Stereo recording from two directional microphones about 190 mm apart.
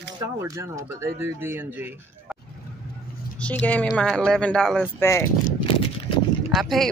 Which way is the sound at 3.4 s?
10° left (ahead or behind).